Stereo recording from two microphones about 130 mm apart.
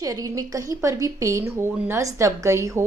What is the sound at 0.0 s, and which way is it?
A woman's voice, 25° right (ahead or behind).